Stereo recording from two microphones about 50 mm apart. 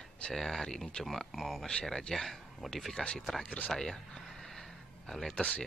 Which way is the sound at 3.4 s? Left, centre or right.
Left.